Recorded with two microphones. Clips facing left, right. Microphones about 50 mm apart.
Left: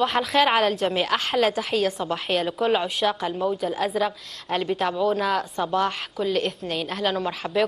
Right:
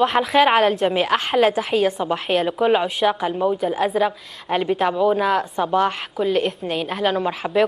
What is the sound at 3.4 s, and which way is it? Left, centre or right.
Speech, centre.